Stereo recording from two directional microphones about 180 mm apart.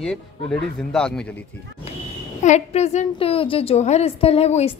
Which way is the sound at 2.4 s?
40° left (ahead or behind).